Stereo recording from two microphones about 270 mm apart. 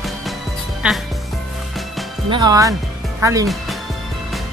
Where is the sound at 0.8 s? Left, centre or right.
Centre.